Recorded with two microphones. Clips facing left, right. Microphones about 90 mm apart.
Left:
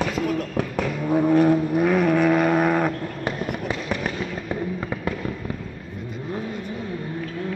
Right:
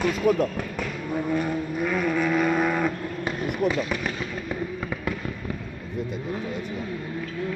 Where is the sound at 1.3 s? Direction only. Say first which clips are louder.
Left 8 dB; 65° left (ahead or behind); by 2.9 s 45° left (ahead or behind).